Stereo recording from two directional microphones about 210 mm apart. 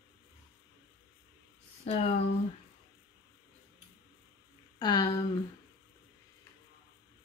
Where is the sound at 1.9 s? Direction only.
30° left (ahead or behind).